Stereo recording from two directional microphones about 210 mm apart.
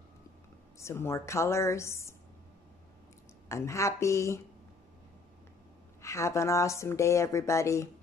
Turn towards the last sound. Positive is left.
turn(degrees=15)  # may be behind; listen again after turning